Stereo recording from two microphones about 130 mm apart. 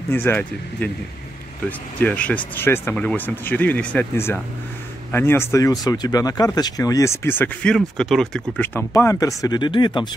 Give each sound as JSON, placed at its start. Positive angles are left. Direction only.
{"t": 0.1, "sound": "speech", "side_deg": 15}
{"t": 2.0, "sound": "speech", "side_deg": 10}
{"t": 7.7, "sound": "speech", "side_deg": 5}
{"t": 8.5, "sound": "speech", "side_deg": 15}